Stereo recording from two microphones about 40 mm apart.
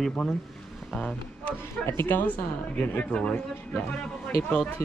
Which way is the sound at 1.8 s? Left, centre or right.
Left.